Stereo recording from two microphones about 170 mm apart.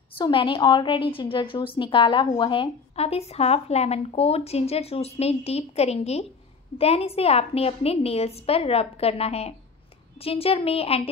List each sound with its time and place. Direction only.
0.2 s a woman's voice: 30° left (ahead or behind)